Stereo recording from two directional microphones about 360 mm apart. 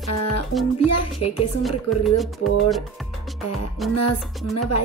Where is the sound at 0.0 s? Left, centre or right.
Left.